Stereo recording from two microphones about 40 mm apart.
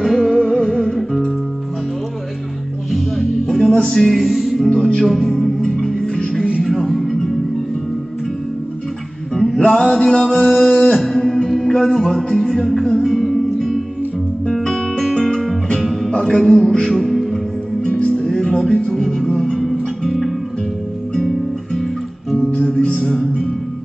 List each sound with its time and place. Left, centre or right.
0.0 s music: centre
2.9 s music: centre
5.9 s music: centre
6.6 s music: centre
9.3 s music: centre
9.6 s male singing: left
11.0 s music: centre
16.1 s music: centre
17.8 s music: left
18.9 s music: centre
22.9 s music: centre